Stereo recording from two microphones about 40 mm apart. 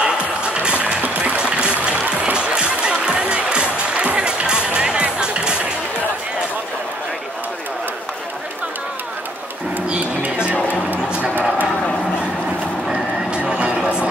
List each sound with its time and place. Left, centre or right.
0.0 s music: right
12.8 s vehicle: centre